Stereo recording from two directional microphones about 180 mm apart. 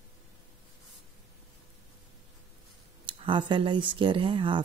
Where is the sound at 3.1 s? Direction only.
30° right (ahead or behind).